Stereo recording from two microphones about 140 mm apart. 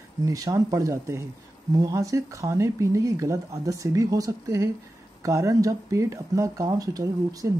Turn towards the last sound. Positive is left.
turn(degrees=-25)  # may be behind; listen again after turning